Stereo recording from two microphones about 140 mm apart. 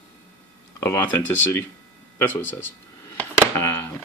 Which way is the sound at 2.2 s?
15° left (ahead or behind).